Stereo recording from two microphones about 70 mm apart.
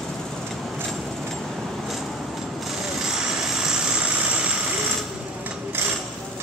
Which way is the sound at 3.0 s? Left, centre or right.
Centre.